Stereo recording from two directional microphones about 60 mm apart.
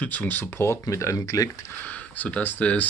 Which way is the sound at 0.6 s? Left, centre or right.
Left.